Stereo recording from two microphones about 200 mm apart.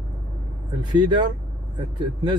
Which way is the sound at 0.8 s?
20° right (ahead or behind).